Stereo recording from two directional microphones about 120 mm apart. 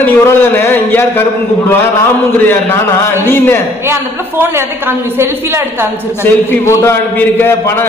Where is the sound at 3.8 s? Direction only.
20° right (ahead or behind).